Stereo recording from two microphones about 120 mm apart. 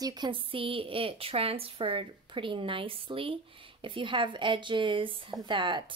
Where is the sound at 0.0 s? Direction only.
35° right (ahead or behind).